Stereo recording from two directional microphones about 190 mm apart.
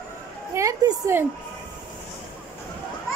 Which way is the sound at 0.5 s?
15° right (ahead or behind).